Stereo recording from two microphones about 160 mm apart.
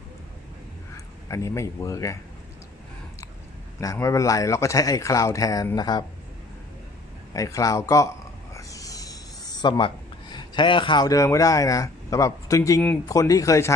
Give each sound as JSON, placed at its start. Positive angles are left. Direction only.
{"t": 0.9, "sound": "speech", "side_deg": 20}
{"t": 3.8, "sound": "speech", "side_deg": 20}
{"t": 7.3, "sound": "speech", "side_deg": 20}
{"t": 8.5, "sound": "a sound", "side_deg": 20}
{"t": 13.1, "sound": "speech", "side_deg": 20}